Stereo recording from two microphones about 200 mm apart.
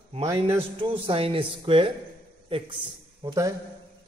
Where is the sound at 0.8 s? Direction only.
25° right (ahead or behind).